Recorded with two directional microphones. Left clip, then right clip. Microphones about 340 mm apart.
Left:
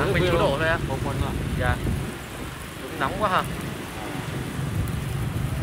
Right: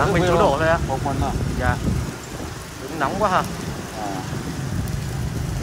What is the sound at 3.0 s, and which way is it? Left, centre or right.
Speech, centre.